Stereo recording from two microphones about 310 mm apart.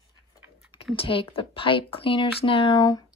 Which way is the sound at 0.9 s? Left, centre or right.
Centre.